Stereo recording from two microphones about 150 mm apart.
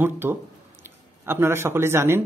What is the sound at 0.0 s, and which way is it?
Speech, 15° right (ahead or behind).